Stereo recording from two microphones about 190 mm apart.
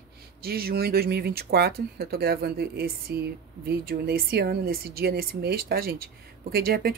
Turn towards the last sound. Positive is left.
turn(degrees=-50)  # may be behind; listen again after turning